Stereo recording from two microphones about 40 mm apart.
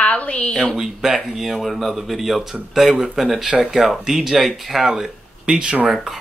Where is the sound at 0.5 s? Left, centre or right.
Centre.